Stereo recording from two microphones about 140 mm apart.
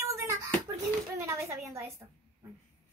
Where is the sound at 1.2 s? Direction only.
20° right (ahead or behind).